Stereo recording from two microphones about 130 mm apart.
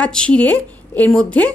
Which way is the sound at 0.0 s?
10° left (ahead or behind).